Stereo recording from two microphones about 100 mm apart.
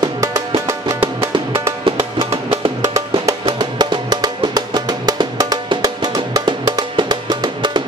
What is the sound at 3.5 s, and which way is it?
Music, 45° right (ahead or behind).